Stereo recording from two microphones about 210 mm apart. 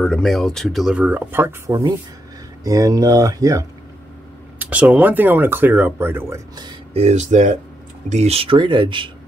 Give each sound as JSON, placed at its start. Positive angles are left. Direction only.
{"t": 0.0, "sound": "speech", "side_deg": 0}